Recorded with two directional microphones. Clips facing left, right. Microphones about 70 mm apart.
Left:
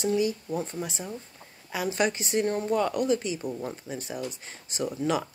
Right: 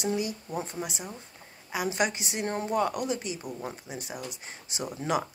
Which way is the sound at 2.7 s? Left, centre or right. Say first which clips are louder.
Left 3 dB; centre.